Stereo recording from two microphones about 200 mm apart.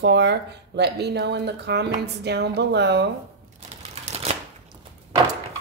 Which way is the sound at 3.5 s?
35° right (ahead or behind).